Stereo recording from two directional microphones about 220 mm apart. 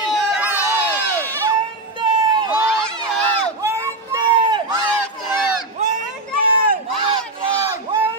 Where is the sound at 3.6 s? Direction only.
15° right (ahead or behind).